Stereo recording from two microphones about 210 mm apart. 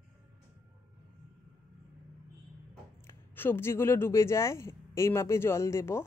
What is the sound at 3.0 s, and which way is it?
Speech, 10° left (ahead or behind).